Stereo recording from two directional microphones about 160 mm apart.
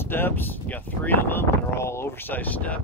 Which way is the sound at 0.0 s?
15° left (ahead or behind).